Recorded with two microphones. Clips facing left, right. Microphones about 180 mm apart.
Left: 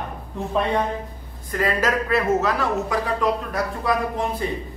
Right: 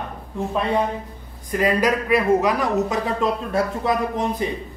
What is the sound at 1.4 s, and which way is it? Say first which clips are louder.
Speech: right 3 dB; 15° right (ahead or behind).